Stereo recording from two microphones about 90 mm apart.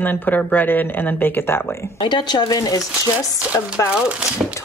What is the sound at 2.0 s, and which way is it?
Speech, 60° left (ahead or behind).